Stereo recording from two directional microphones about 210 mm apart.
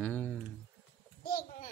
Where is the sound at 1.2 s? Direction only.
40° left (ahead or behind).